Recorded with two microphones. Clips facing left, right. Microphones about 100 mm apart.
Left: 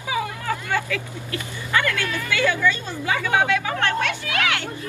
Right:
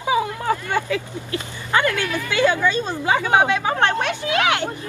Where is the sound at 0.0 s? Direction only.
25° right (ahead or behind).